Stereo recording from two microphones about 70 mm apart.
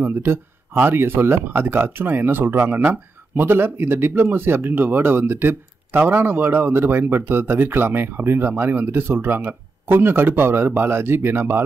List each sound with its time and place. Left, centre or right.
0.0 s speech: right